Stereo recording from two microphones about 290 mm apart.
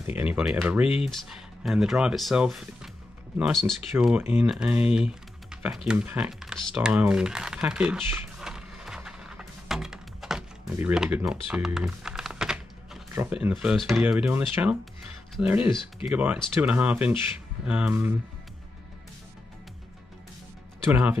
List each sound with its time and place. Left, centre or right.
0.0 s speech: centre
0.8 s speech: left
1.1 s speech: centre
4.9 s typing: centre
15.3 s speech: centre
20.9 s speech: centre